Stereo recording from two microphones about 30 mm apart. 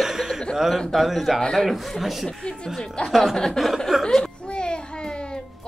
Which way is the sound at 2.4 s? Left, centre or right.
Left.